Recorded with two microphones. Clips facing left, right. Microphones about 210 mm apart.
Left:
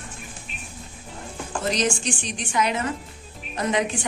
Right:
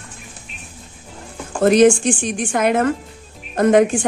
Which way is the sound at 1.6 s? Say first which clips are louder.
Right 13 dB; 55° right (ahead or behind).